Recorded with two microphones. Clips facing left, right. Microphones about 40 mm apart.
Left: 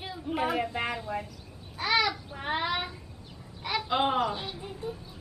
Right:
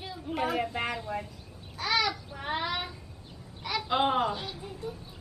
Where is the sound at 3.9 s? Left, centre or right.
Centre.